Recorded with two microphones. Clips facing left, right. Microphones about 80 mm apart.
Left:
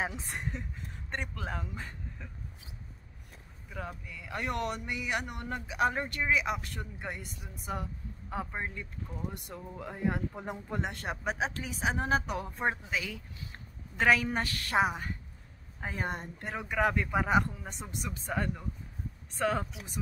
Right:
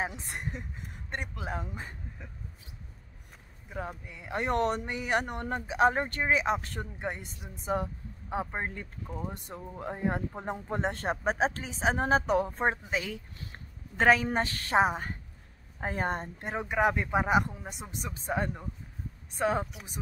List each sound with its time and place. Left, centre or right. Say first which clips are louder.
0.0 s speech: right 1 dB; centre
4.0 s speech: right 5 dB; right
8.6 s speech: right 2 dB; right
16.3 s speech: right 1 dB; right